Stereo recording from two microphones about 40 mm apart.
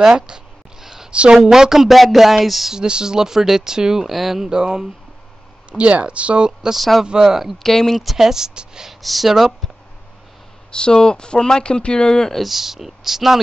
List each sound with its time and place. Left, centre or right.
0.0 s a sound: centre
1.3 s speech: centre
2.0 s a sound: centre
2.7 s speech: centre
4.5 s speech: centre
5.7 s speech: right
6.7 s a sound: centre
7.2 s speech: centre
7.5 s speech: centre
8.0 s speech: centre
9.0 s a sound: centre
10.7 s speech: left
12.4 s speech: centre